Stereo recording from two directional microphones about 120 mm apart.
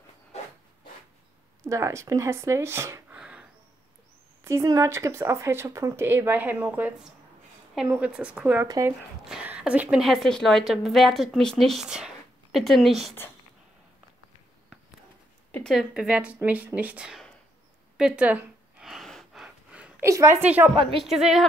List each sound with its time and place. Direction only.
1.6 s speech: 25° right (ahead or behind)
3.2 s a sound: 10° right (ahead or behind)
4.5 s a woman's voice: 25° right (ahead or behind)
8.6 s speech: 30° right (ahead or behind)
9.2 s a woman's voice: 10° right (ahead or behind)
15.6 s a woman's voice: centre (ahead or behind)
17.9 s a sound: 10° right (ahead or behind)
18.9 s gasp: centre (ahead or behind)
20.1 s speech: 25° right (ahead or behind)
20.4 s a woman's voice: 15° right (ahead or behind)
21.0 s a woman's voice: centre (ahead or behind)